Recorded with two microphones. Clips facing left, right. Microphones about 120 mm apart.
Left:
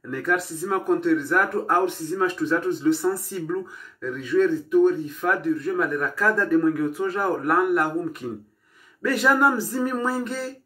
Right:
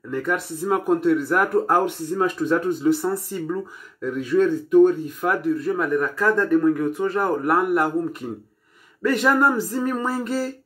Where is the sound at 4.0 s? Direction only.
15° right (ahead or behind).